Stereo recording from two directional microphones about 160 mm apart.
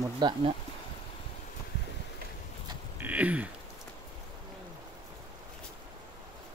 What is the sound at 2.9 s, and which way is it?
Speech, 10° right (ahead or behind).